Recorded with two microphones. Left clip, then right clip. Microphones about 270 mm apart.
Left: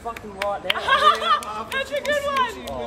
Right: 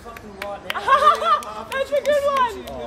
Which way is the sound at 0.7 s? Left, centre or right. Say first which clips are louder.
Right 3 dB; right.